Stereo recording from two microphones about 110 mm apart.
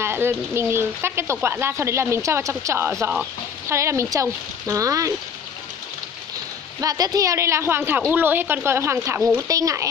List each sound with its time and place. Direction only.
0.0 s speech: 20° right (ahead or behind)
6.8 s a child's voice: 35° right (ahead or behind)